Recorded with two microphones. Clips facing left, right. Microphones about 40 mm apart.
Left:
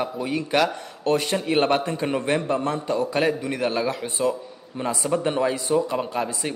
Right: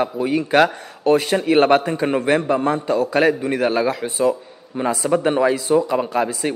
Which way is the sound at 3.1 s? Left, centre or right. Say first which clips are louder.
Right 6 dB; right.